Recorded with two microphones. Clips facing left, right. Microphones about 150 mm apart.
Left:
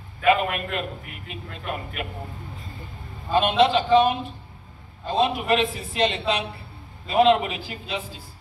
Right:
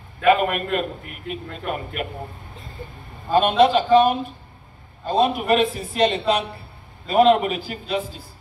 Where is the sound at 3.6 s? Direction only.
45° right (ahead or behind).